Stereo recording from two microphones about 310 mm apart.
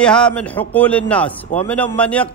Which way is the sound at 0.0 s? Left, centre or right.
Centre.